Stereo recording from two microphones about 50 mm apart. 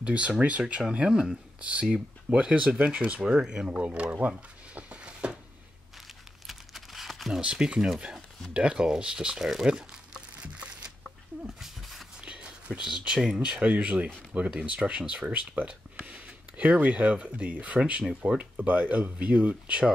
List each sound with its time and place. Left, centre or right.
0.0 s speech: right
6.4 s crumpling: centre
7.3 s speech: centre
9.7 s crumpling: centre
11.4 s dog: centre
12.2 s a sound: right
13.4 s speech: right